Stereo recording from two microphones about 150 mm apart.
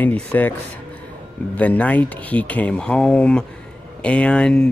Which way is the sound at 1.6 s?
10° left (ahead or behind).